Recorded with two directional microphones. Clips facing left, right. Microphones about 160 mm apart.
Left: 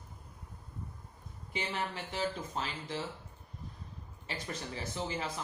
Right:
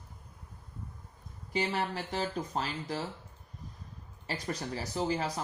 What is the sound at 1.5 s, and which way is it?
Speech, 40° right (ahead or behind).